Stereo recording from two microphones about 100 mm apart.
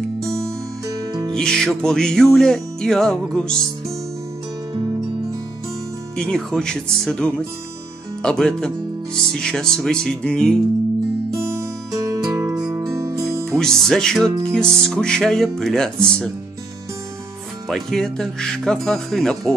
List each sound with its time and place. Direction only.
0.3 s music: 30° right (ahead or behind)
1.3 s music: 5° left (ahead or behind)
6.1 s speech: 5° left (ahead or behind)
11.4 s music: 30° right (ahead or behind)
13.5 s music: 5° left (ahead or behind)
17.6 s music: centre (ahead or behind)